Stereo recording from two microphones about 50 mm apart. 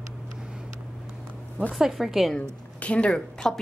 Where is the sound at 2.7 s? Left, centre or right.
Left.